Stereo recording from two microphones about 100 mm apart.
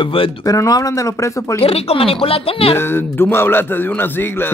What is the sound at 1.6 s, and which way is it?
Speech, 75° left (ahead or behind).